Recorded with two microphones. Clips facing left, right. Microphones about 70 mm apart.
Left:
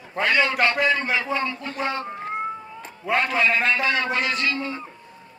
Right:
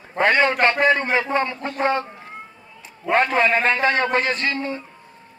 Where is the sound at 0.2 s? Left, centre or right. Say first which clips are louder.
Right 3 dB; right.